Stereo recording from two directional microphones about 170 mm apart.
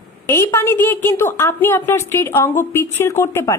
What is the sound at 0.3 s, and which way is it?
A woman's voice, 15° left (ahead or behind).